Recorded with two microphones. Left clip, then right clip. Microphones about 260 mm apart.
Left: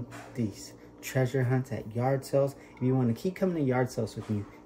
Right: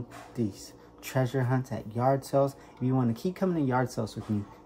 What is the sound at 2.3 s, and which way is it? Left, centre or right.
Speech, centre.